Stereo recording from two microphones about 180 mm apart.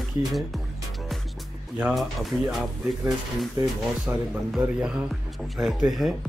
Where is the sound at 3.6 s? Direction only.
15° right (ahead or behind).